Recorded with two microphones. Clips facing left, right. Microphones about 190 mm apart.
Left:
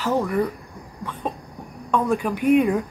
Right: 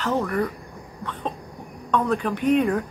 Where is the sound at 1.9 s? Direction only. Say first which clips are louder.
Left 1 dB; 10° left (ahead or behind).